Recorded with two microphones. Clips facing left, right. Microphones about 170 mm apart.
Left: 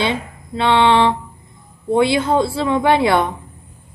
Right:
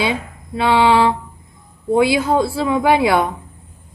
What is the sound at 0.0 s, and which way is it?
A woman's voice, 5° right (ahead or behind).